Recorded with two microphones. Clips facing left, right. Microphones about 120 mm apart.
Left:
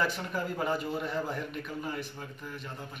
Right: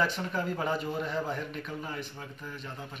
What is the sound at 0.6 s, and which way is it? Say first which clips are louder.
Speech: even; centre (ahead or behind).